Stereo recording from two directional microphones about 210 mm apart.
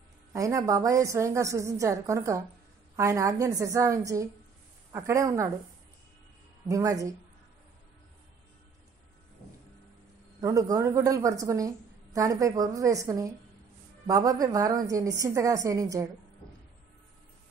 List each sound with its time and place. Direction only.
0.3 s a woman's voice: 15° right (ahead or behind)
6.7 s a woman's voice: 15° right (ahead or behind)
10.4 s a woman's voice: 15° right (ahead or behind)